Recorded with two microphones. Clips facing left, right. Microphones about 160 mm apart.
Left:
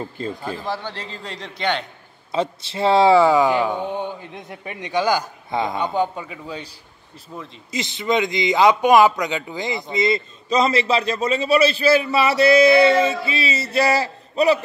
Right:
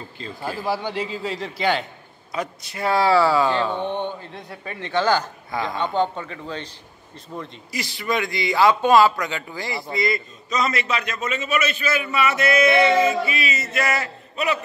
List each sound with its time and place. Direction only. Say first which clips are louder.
0.4 s a man's voice: right 2 dB; 10° right (ahead or behind)
2.3 s speech: left 6 dB; 25° left (ahead or behind)
5.5 s a man's voice: left 4 dB; 25° left (ahead or behind)
5.8 s a man's voice: even; 10° left (ahead or behind)
7.7 s a man's voice: left 4 dB; 20° left (ahead or behind)